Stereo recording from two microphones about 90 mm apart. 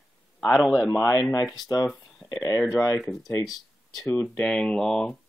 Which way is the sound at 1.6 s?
50° left (ahead or behind).